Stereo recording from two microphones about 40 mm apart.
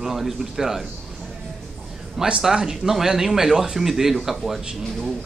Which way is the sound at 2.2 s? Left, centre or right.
Centre.